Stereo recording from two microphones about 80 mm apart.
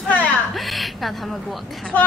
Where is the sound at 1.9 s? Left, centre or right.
Left.